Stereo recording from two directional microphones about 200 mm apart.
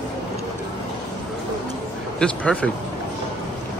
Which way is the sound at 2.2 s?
5° left (ahead or behind).